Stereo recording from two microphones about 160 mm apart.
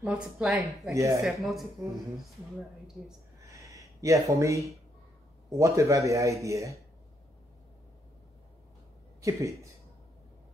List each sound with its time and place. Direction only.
0.0 s speech: centre (ahead or behind)
0.9 s speech: 20° right (ahead or behind)
1.2 s speech: centre (ahead or behind)
3.5 s a sound: 20° right (ahead or behind)
5.5 s speech: 20° right (ahead or behind)
9.2 s speech: 20° right (ahead or behind)